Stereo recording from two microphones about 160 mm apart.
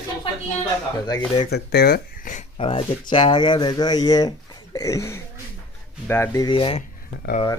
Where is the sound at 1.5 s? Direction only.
80° left.